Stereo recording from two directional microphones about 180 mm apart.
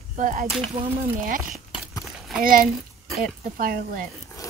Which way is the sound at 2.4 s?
50° right (ahead or behind).